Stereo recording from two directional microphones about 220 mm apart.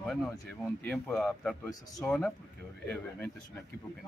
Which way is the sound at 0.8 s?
5° left (ahead or behind).